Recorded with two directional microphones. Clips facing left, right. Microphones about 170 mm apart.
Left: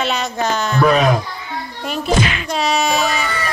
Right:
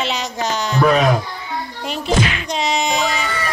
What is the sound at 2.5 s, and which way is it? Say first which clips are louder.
Child singing: left 2 dB; 20° right (ahead or behind).